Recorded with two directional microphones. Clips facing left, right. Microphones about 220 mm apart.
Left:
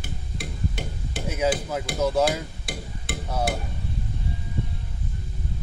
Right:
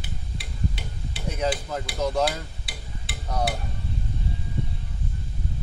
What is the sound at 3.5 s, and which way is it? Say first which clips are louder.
Speech: left 3 dB; 45° left (ahead or behind).